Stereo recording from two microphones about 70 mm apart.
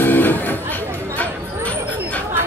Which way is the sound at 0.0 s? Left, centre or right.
Left.